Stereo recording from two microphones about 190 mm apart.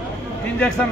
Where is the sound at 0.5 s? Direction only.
5° left (ahead or behind).